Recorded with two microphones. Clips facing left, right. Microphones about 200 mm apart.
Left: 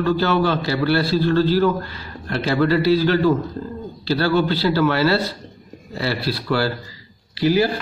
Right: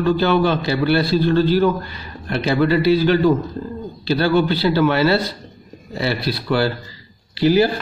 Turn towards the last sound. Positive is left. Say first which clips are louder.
# right 3 dB
turn(degrees=-30)  # may be behind; listen again after turning